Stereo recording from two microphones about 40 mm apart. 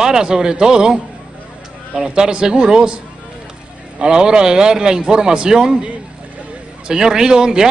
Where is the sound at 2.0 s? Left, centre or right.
Right.